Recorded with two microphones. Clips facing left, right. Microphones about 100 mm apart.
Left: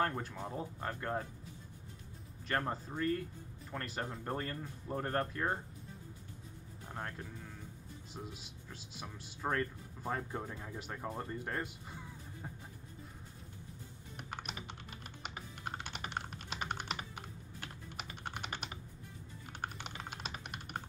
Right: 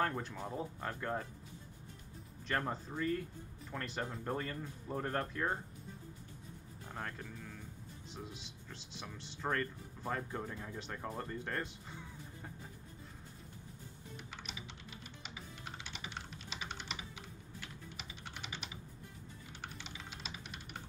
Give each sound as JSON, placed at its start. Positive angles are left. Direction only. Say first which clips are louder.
{"t": 0.0, "sound": "speech", "louder": "left 1 dB", "side_deg": 5}
{"t": 2.4, "sound": "speech", "louder": "left 1 dB", "side_deg": 5}
{"t": 6.9, "sound": "speech", "louder": "left 1 dB", "side_deg": 5}
{"t": 14.1, "sound": "typing", "louder": "left 5 dB", "side_deg": 55}
{"t": 19.5, "sound": "music", "louder": "left 6 dB", "side_deg": 55}